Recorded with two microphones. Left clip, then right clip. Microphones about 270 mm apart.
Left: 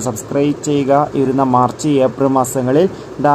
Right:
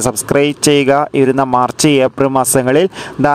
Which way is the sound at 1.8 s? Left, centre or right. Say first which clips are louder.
Right 3 dB; right.